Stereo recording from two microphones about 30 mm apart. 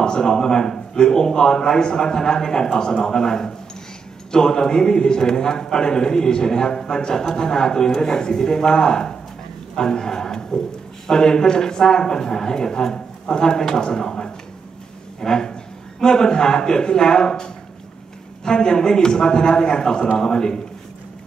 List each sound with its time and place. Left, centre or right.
0.0 s a man's voice: left